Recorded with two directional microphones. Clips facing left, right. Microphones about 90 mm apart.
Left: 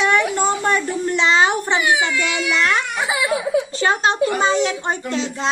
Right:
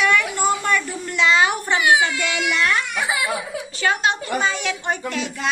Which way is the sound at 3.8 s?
30° left (ahead or behind).